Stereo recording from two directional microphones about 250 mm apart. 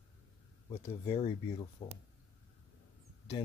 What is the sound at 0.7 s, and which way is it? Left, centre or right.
Speech, left.